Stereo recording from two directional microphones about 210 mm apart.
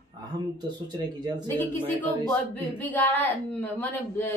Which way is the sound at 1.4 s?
10° left (ahead or behind).